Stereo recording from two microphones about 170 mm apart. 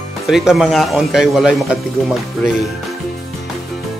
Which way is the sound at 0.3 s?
Centre (ahead or behind).